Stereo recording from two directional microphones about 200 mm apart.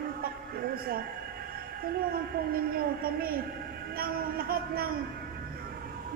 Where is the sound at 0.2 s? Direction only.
50° right (ahead or behind).